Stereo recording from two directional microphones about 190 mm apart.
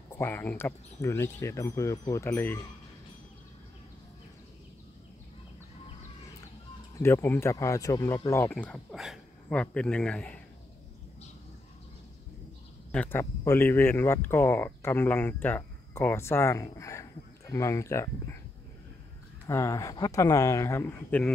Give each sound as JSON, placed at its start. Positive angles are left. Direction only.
{"t": 0.1, "sound": "speech", "side_deg": 10}
{"t": 7.0, "sound": "speech", "side_deg": 15}
{"t": 12.9, "sound": "speech", "side_deg": 10}
{"t": 19.4, "sound": "speech", "side_deg": 15}